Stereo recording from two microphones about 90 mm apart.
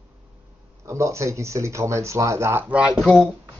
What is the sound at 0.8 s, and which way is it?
Speech, 35° right (ahead or behind).